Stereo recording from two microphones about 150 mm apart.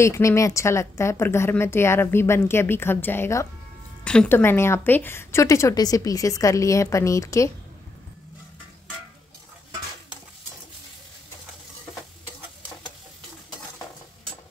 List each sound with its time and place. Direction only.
0.0 s a woman's voice: 20° left (ahead or behind)
4.0 s a woman's voice: 5° left (ahead or behind)